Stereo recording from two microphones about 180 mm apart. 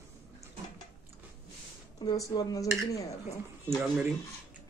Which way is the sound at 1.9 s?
20° left (ahead or behind).